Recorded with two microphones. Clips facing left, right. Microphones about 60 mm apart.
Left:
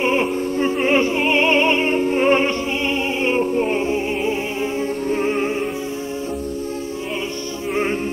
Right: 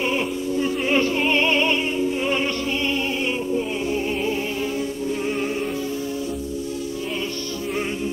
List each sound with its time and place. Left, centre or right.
0.0 s music: left
1.9 s music: left
5.2 s music: left